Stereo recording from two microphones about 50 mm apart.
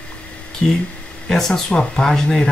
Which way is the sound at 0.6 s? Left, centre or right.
Centre.